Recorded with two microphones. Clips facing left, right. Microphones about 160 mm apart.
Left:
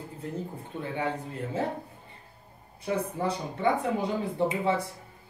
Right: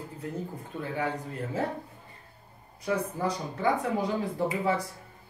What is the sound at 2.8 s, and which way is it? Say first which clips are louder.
Speech: even; 30° left (ahead or behind).